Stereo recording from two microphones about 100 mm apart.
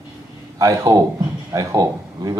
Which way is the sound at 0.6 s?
35° right (ahead or behind).